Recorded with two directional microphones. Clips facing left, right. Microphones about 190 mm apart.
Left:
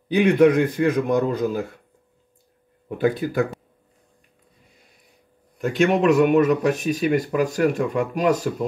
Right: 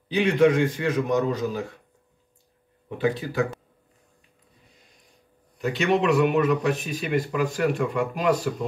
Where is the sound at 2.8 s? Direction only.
50° left (ahead or behind).